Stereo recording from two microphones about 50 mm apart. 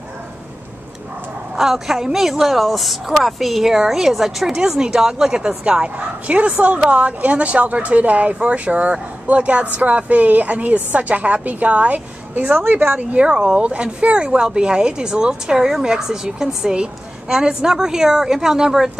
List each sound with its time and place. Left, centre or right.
1.6 s a woman's voice: centre; by 12.5 s right
12.5 s speech: right
13.2 s speech: centre